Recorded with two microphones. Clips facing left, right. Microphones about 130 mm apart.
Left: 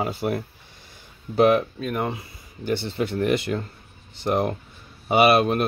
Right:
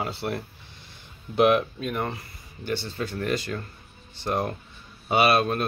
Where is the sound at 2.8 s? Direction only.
25° left (ahead or behind).